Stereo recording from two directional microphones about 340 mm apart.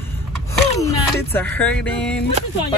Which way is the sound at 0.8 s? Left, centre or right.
Centre.